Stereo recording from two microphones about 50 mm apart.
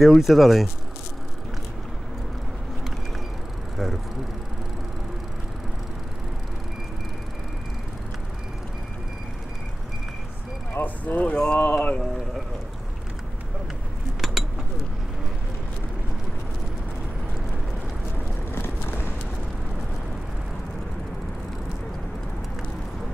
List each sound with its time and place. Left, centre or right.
0.0 s speech: centre
3.7 s speech: centre
10.7 s vehicle: left
11.3 s speech: centre
11.6 s speech: left
14.2 s mechanisms: centre
18.5 s vehicle: left